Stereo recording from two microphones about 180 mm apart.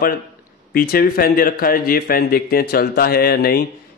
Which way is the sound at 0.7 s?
55° left (ahead or behind).